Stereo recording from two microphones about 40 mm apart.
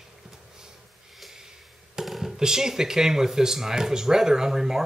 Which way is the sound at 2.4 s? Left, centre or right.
Centre.